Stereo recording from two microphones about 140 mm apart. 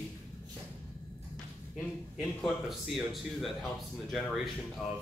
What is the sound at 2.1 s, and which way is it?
Speech, centre (ahead or behind).